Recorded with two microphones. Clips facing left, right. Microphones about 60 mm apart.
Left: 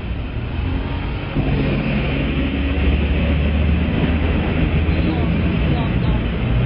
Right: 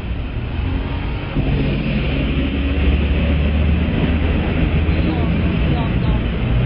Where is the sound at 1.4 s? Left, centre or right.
Left.